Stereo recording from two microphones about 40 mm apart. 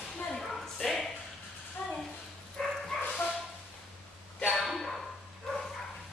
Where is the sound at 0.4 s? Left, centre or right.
Centre.